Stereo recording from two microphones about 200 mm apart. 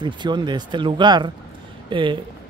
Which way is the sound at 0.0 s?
20° right (ahead or behind).